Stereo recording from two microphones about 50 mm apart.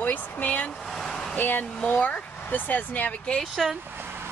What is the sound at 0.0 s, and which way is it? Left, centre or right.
Vehicle, left.